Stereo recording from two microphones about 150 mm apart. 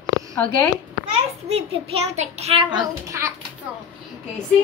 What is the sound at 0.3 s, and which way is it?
Speech, 10° left (ahead or behind).